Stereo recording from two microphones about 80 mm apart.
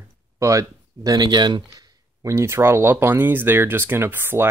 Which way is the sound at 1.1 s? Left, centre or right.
Right.